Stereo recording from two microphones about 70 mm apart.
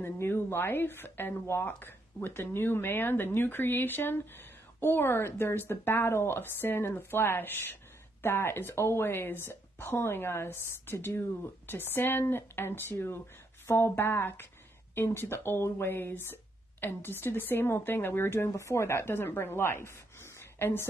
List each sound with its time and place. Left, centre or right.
0.0 s speech: left